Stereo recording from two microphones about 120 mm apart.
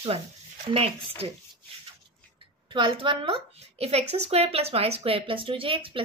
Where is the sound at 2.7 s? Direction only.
45° right (ahead or behind).